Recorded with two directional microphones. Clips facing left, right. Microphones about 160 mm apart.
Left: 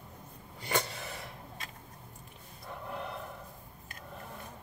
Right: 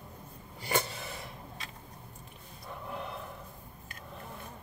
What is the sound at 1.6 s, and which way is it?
Tick-tock, 45° left (ahead or behind).